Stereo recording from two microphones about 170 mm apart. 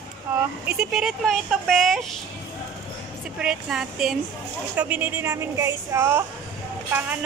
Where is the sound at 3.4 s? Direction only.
5° right (ahead or behind).